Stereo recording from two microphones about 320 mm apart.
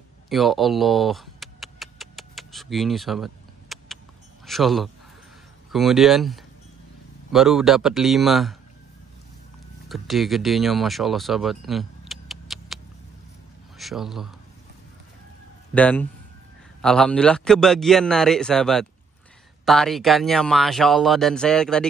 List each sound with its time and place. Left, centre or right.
0.3 s a sound: centre
4.5 s speech: centre
9.8 s speech: centre
15.7 s speech: centre